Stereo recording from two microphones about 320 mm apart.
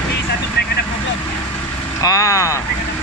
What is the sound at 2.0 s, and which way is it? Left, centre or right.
Vehicle, centre.